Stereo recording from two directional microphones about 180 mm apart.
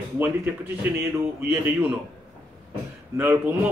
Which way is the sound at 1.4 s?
10° right (ahead or behind).